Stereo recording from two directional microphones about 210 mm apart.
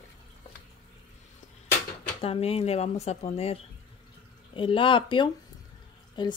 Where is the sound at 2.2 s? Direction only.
30° left (ahead or behind).